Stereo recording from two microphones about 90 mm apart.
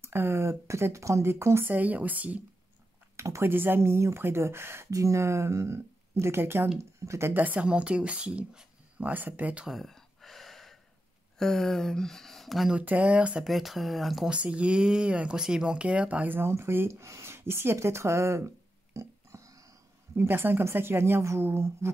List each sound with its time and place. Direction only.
0.0 s speech: 25° right (ahead or behind)
1.7 s speech: 20° right (ahead or behind)
3.2 s a sound: 30° right (ahead or behind)
3.5 s speech: 25° right (ahead or behind)
9.7 s gasp: centre (ahead or behind)
11.3 s speech: 5° left (ahead or behind)
12.7 s speech: 15° right (ahead or behind)
13.5 s speech: centre (ahead or behind)
14.3 s speech: 15° right (ahead or behind); by 18.5 s 30° right (ahead or behind)
18.9 s a sound: 35° right (ahead or behind)
20.2 s speech: 25° right (ahead or behind)